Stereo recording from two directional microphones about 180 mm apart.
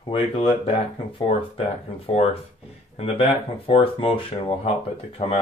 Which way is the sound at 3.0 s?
35° left (ahead or behind).